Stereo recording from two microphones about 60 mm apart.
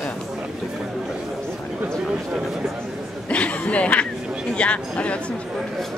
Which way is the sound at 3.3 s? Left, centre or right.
Left.